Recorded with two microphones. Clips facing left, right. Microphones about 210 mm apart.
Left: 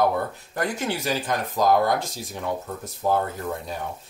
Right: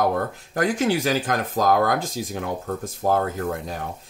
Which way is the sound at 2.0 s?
90° right.